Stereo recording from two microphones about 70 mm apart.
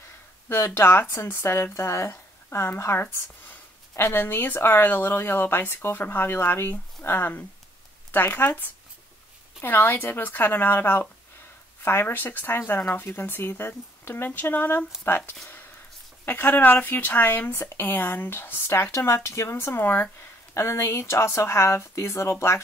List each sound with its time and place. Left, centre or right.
0.7 s a woman's voice: left